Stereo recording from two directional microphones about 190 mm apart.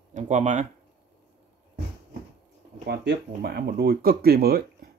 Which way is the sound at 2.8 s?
60° right (ahead or behind).